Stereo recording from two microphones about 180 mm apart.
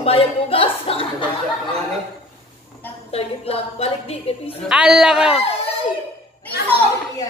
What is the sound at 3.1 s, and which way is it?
A woman's voice, 35° left (ahead or behind).